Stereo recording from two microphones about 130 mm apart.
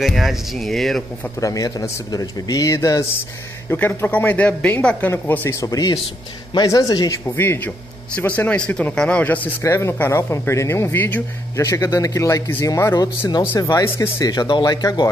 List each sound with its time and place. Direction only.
0.0 s speech: centre (ahead or behind)
1.4 s speech: 25° left (ahead or behind)
3.7 s speech: 15° left (ahead or behind); by 7.2 s 30° left (ahead or behind)
7.2 s speech: 15° left (ahead or behind)
9.6 s speech: 20° left (ahead or behind)
11.6 s speech: 25° left (ahead or behind)
13.8 s speech: 15° left (ahead or behind)
14.3 s speech: 35° left (ahead or behind)